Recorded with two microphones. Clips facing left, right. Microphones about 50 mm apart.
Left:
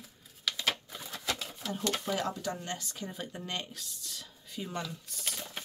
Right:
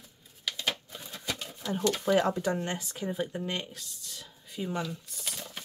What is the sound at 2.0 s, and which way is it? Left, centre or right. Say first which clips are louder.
Speech: right 7 dB; right.